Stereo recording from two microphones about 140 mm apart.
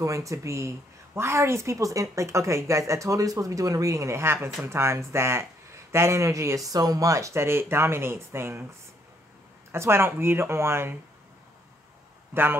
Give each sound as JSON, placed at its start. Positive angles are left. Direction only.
{"t": 0.0, "sound": "a woman's voice", "side_deg": -25}
{"t": 9.7, "sound": "speech", "side_deg": -15}